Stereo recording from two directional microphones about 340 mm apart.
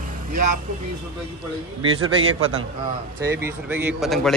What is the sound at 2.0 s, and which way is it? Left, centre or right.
Speech, right.